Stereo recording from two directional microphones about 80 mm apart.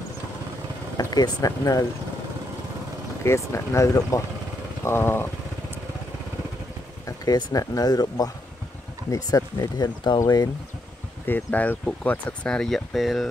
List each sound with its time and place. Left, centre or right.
0.9 s speech: left
3.3 s speech: left
4.8 s speech: left
7.3 s speech: left
11.2 s speech: left
12.4 s speech: centre